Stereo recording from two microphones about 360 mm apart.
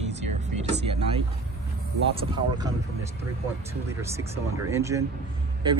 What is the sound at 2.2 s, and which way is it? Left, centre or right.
Speech, centre.